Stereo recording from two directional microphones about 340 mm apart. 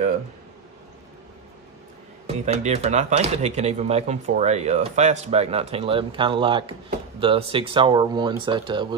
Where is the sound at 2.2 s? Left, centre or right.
Centre.